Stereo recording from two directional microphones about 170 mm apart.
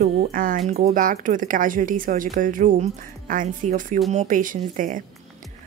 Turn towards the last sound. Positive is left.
turn(degrees=-50)  # may be behind; listen again after turning